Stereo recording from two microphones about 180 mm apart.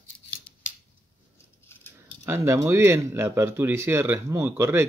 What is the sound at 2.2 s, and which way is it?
Speech, 15° right (ahead or behind).